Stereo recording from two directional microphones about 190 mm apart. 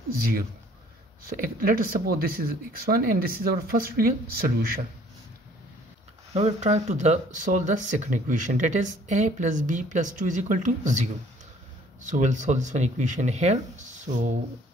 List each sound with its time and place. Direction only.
1.2 s speech: 50° right (ahead or behind)
6.3 s speech: 35° right (ahead or behind)